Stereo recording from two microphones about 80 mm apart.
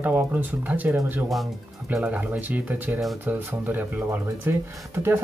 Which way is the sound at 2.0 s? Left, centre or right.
Centre.